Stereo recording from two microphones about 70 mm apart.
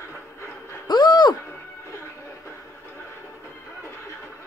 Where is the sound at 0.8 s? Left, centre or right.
Left.